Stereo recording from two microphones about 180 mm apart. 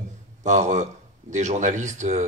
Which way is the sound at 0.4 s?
40° right (ahead or behind).